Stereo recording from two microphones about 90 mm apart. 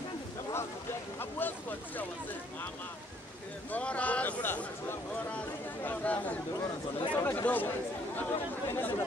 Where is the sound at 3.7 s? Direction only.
15° left (ahead or behind).